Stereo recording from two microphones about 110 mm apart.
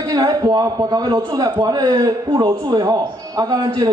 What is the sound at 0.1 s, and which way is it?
A man's voice, 35° right (ahead or behind).